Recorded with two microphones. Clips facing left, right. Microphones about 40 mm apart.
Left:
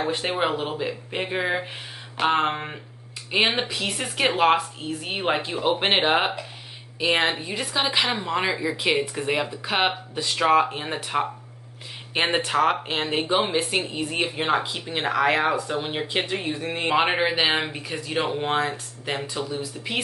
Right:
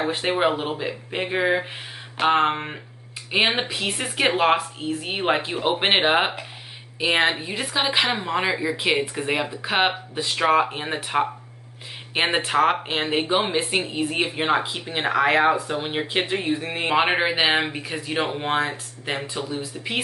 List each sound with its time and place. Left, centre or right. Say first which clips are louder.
0.0 s speech: right 3 dB; centre